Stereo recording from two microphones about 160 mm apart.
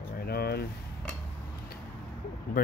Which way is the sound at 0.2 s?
80° left.